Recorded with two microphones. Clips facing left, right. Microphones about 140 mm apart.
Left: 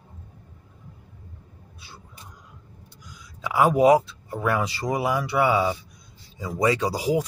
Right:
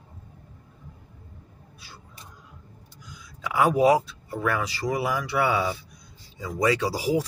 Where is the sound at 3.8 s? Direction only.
20° left (ahead or behind).